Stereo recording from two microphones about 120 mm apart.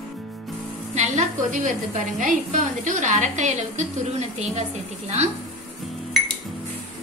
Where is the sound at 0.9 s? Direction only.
75° right (ahead or behind).